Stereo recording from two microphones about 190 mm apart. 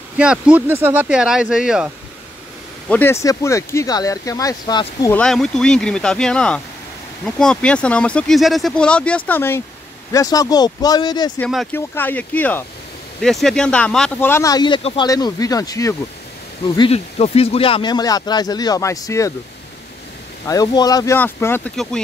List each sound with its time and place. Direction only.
0.2 s speech: 5° right (ahead or behind)
2.9 s speech: 10° left (ahead or behind)
5.1 s speech: 5° left (ahead or behind); by 11.3 s 20° left (ahead or behind)
11.3 s speech: 5° left (ahead or behind)
20.4 s speech: 20° left (ahead or behind)